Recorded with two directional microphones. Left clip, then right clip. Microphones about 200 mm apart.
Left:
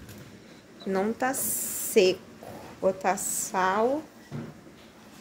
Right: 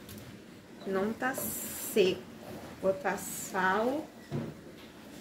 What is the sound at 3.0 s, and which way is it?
Speech, 50° left (ahead or behind).